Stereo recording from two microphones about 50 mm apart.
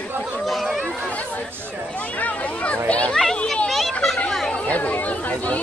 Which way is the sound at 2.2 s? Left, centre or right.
Left.